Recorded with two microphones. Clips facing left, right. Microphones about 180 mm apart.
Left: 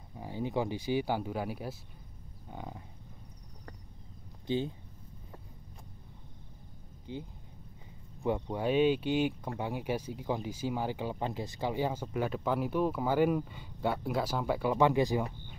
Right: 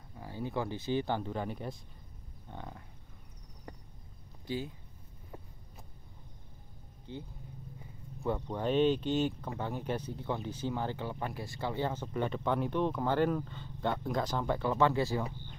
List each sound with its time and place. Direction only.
0.2 s speech: 15° left (ahead or behind)
4.5 s speech: 25° left (ahead or behind)
7.1 s speech: 15° left (ahead or behind)